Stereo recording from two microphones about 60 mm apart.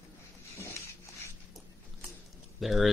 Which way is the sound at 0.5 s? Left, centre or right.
Left.